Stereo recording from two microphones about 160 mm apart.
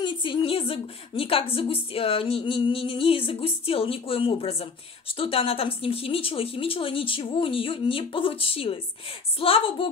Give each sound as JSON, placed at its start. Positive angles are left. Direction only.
{"t": 0.0, "sound": "a woman's voice", "side_deg": 30}